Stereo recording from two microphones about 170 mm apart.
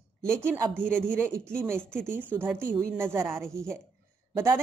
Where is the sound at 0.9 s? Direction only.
5° left (ahead or behind).